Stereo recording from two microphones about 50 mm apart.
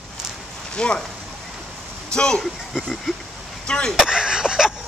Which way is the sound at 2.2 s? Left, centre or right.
Centre.